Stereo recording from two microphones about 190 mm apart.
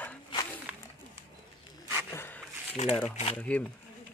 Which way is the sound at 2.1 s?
10° left (ahead or behind).